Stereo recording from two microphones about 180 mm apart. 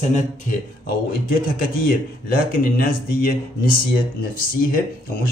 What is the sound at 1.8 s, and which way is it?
Speech, 55° left (ahead or behind).